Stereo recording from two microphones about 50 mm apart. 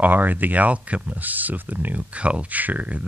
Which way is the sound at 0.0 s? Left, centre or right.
Right.